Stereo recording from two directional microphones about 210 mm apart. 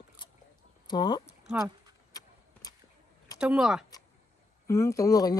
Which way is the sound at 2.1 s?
20° left (ahead or behind).